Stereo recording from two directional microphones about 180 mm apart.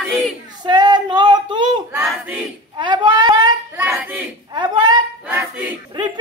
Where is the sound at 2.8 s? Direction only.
25° right (ahead or behind).